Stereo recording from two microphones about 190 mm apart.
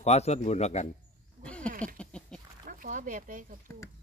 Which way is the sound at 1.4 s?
5° left (ahead or behind).